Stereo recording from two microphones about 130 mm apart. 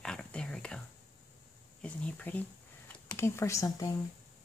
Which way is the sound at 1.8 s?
10° left (ahead or behind).